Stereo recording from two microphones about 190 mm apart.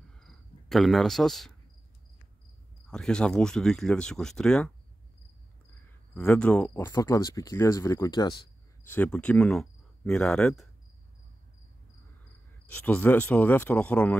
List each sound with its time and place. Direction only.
0.2 s cricket: centre (ahead or behind)
2.9 s speech: 5° left (ahead or behind)
6.1 s speech: 5° left (ahead or behind)
8.8 s speech: 10° left (ahead or behind)
12.6 s speech: 10° left (ahead or behind)